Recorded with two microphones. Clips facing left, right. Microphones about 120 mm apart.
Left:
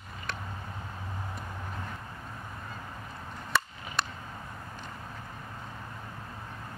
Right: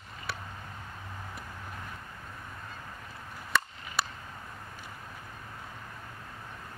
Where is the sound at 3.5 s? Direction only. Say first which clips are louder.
Even; 5° left (ahead or behind).